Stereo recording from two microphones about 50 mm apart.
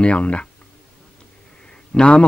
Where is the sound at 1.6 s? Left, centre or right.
Left.